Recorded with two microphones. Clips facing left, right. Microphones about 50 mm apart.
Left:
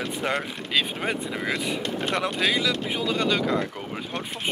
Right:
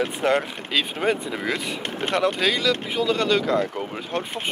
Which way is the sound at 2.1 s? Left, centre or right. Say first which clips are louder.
Right 4 dB; centre.